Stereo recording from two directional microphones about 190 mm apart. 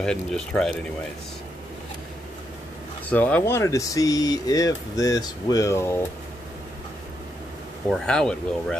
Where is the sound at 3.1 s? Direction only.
10° left (ahead or behind).